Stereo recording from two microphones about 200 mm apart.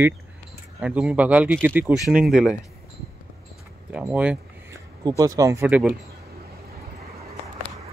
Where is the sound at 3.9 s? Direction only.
5° right (ahead or behind).